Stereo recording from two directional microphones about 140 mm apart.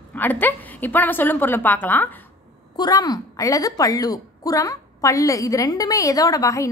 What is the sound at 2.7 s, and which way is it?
A woman's voice, 30° left (ahead or behind).